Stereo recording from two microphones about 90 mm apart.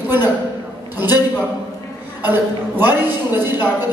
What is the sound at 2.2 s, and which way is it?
A man's voice, 20° right (ahead or behind).